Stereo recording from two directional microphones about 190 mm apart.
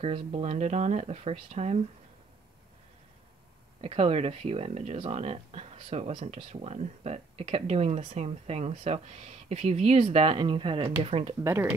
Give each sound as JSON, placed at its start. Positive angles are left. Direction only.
{"t": 0.0, "sound": "speech", "side_deg": -35}
{"t": 3.8, "sound": "speech", "side_deg": -30}